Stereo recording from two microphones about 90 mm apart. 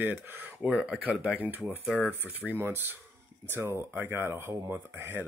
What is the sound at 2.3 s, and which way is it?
Speech, 15° right (ahead or behind).